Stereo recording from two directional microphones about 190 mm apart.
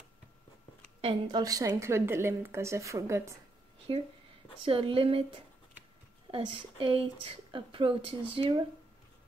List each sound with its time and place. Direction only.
1.0 s a woman's voice: 20° right (ahead or behind)
3.9 s speech: 25° right (ahead or behind)